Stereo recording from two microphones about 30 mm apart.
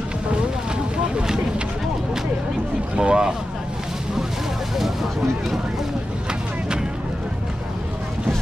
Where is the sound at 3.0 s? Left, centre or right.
Right.